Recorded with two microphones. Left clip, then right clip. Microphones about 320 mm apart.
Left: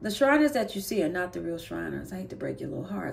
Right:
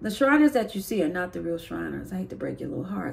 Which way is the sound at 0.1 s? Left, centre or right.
Centre.